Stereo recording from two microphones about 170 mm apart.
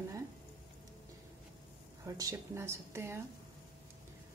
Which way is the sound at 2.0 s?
20° right (ahead or behind).